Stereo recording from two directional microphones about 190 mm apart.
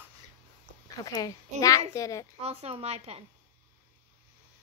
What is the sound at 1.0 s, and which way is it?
A woman's voice, 20° left (ahead or behind).